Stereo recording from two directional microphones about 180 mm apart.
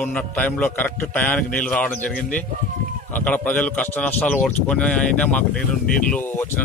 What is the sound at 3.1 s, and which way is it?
A man's voice, 10° left (ahead or behind).